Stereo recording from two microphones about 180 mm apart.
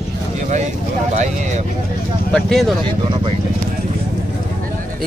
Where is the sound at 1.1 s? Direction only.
40° right (ahead or behind).